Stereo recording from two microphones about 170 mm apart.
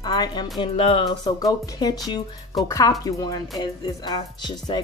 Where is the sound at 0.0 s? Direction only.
25° left (ahead or behind).